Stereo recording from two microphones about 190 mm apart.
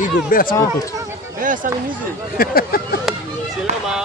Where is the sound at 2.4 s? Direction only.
50° left (ahead or behind).